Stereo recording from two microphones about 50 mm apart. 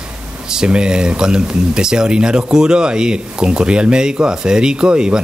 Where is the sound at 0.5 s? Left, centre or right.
Centre.